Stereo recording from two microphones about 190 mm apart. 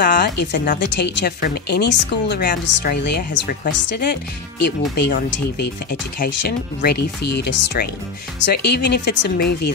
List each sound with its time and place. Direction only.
0.0 s speech: 55° left (ahead or behind)
2.6 s speech: 60° left (ahead or behind)